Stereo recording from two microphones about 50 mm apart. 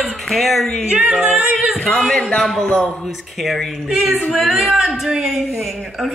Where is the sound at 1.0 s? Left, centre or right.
Right.